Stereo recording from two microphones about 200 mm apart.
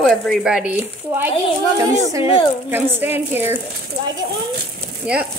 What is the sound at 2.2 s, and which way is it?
Speech, 25° left (ahead or behind).